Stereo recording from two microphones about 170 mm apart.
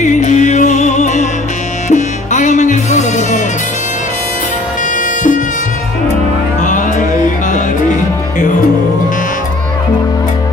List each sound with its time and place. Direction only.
0.0 s music: 45° left (ahead or behind)
6.6 s music: 50° left (ahead or behind)